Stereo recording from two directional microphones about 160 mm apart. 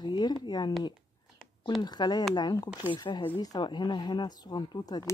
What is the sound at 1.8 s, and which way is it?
Speech, 25° left (ahead or behind).